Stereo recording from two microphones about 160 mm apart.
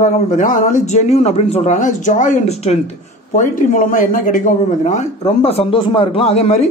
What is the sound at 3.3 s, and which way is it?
A man's voice, 55° left (ahead or behind).